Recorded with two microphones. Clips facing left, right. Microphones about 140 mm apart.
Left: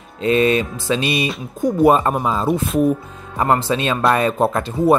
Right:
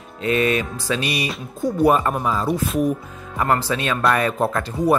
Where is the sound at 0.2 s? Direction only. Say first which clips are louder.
Left 4 dB; 25° left (ahead or behind).